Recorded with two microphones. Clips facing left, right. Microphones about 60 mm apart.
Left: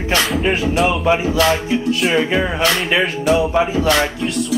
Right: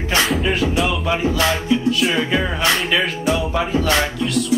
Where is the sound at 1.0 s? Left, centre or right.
Centre.